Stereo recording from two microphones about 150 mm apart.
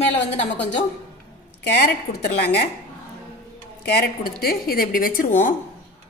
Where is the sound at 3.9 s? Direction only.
80° left.